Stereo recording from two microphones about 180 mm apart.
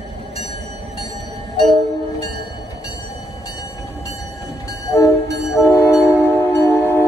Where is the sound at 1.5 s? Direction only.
20° left (ahead or behind).